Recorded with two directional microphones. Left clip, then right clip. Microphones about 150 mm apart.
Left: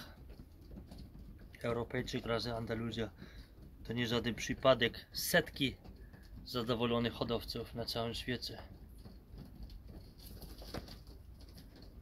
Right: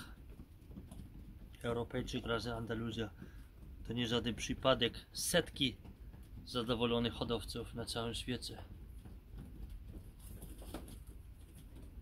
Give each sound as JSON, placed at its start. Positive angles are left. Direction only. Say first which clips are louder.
{"t": 1.6, "sound": "speech", "louder": "left 2 dB", "side_deg": 20}